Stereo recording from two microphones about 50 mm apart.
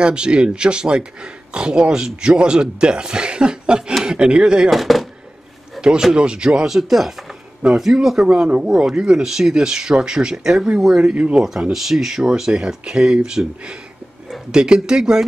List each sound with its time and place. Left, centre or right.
0.0 s a man's voice: centre
4.6 s speech: centre
5.8 s a sound: centre
6.1 s speech: centre
6.7 s speech: centre
8.5 s a man's voice: centre
11.7 s speech: centre